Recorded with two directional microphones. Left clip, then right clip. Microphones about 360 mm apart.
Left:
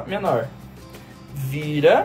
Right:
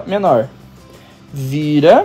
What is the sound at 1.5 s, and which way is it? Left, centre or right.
Speech, right.